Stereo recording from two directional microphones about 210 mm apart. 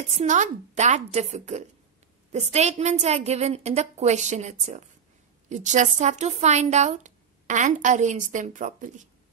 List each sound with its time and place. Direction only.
0.1 s a woman's voice: 35° right (ahead or behind)